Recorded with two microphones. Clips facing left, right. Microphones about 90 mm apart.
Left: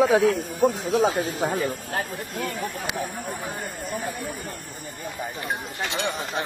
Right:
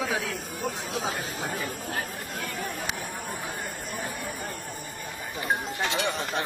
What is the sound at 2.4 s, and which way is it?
Speech, 55° left (ahead or behind).